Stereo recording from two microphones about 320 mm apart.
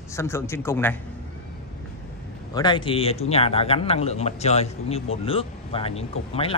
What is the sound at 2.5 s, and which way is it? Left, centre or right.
Speech, centre.